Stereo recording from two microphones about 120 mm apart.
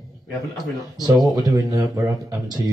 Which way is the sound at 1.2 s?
30° right (ahead or behind).